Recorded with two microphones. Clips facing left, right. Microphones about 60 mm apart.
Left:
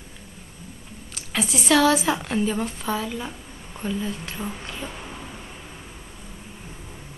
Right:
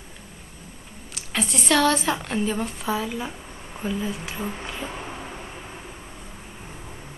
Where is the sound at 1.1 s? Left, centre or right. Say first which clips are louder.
Left 1 dB; centre.